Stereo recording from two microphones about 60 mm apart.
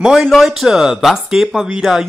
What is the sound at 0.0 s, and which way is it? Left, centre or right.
Speech, centre.